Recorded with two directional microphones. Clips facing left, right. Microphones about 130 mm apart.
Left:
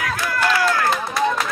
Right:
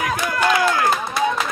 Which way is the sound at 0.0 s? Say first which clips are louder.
Right 2 dB; 20° right (ahead or behind).